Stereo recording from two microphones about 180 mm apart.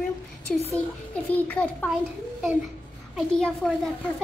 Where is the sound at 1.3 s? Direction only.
10° left (ahead or behind).